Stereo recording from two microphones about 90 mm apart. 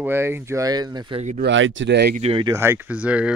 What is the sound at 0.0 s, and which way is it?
Speech, 25° right (ahead or behind).